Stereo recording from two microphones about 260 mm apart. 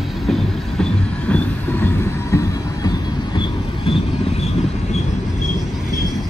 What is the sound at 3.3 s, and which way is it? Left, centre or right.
Vehicle, left.